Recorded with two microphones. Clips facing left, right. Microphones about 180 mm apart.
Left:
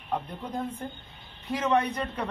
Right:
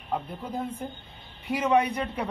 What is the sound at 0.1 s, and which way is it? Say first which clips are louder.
A man's voice: right 1 dB; 5° right (ahead or behind).